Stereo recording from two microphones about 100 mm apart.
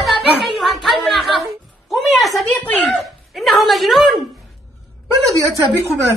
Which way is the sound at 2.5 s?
15° left (ahead or behind).